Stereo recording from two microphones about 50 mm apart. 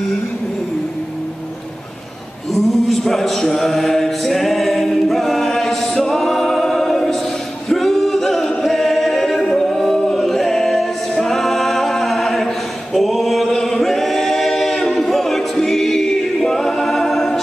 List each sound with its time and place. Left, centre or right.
2.5 s mantra: centre
7.7 s a capella: centre
12.9 s choir: centre